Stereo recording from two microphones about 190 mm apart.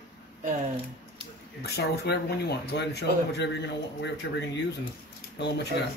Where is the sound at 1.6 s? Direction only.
55° left (ahead or behind).